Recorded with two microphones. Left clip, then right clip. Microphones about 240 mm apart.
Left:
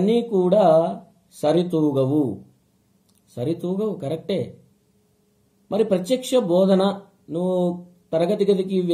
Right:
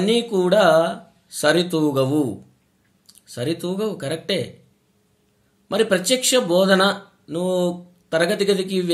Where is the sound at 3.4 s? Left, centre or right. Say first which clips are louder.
Right 1 dB; right.